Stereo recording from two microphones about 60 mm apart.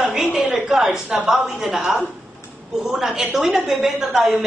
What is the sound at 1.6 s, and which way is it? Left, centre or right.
Speech, centre.